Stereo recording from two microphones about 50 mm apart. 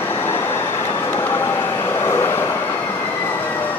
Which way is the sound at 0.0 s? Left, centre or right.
Left.